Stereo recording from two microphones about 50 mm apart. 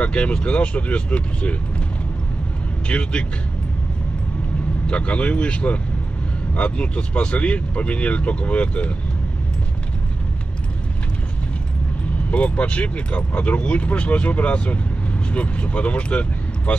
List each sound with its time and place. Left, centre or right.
0.0 s speech: left
2.9 s speech: left
4.8 s speech: left
12.3 s speech: left